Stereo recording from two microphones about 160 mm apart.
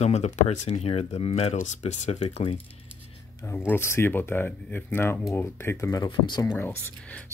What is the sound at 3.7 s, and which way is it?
Speech, 15° left (ahead or behind).